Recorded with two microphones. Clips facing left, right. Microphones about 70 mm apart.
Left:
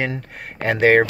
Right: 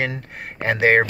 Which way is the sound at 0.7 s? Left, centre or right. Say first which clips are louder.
Left 2 dB; right.